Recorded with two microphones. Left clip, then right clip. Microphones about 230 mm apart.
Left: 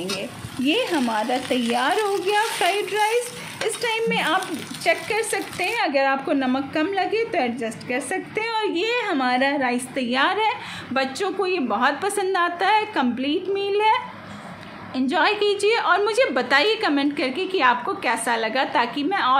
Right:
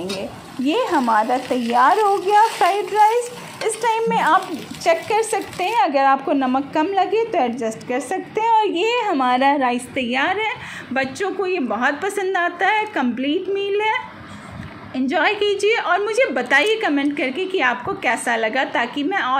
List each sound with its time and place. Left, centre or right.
0.7 s a woman's voice: centre